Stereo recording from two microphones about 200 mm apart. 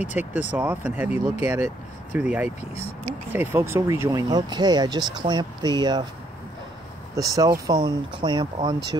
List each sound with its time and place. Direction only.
0.0 s speech: 35° left (ahead or behind)
0.3 s speech: 10° right (ahead or behind)
7.2 s speech: 15° right (ahead or behind)